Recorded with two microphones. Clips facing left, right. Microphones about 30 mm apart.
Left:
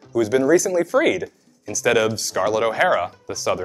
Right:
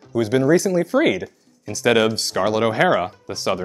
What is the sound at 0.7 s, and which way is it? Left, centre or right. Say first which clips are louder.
Speech: even; right.